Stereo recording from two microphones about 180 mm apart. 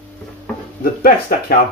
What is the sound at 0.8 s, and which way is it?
Speech, 55° left (ahead or behind).